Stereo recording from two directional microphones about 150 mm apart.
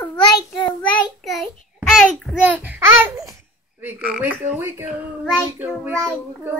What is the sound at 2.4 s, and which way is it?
A child's voice, 10° right (ahead or behind).